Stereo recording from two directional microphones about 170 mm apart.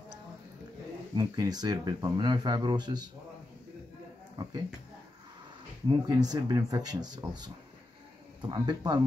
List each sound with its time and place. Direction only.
1.1 s speech: 20° right (ahead or behind)
4.4 s speech: 25° right (ahead or behind)
5.9 s speech: 20° right (ahead or behind)